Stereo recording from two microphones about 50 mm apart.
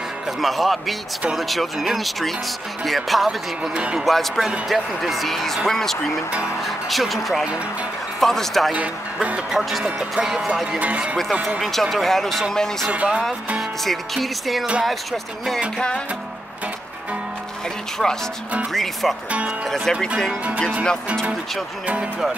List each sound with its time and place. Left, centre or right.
0.4 s speech: centre
3.7 s speech: right
4.0 s speech: centre
8.7 s speech: right
9.5 s speech: centre
10.8 s speech: right
11.6 s speech: centre
12.9 s speech: right
13.6 s speech: centre
18.0 s speech: centre